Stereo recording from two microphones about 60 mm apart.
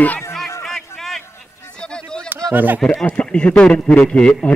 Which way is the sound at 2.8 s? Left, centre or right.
Centre.